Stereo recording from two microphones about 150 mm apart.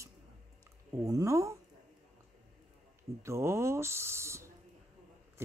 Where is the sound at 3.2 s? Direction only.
20° right (ahead or behind).